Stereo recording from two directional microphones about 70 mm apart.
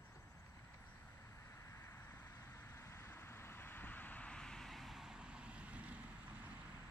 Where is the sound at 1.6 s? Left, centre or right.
Left; by 5.9 s centre.